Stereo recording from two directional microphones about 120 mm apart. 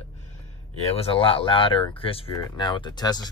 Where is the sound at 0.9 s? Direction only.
50° left (ahead or behind).